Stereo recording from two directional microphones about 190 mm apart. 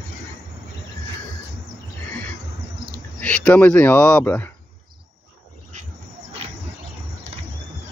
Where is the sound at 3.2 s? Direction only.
5° left (ahead or behind).